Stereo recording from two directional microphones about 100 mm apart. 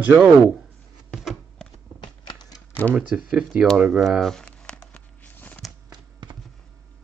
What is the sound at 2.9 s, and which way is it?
Speech, 15° right (ahead or behind).